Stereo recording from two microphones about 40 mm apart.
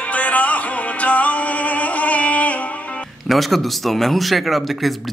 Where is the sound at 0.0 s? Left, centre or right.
Left.